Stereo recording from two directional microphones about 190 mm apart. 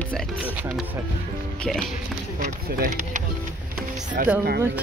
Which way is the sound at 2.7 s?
45° right (ahead or behind).